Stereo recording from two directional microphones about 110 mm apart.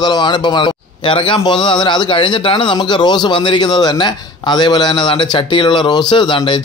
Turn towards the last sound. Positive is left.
turn(degrees=50)  # may be behind; listen again after turning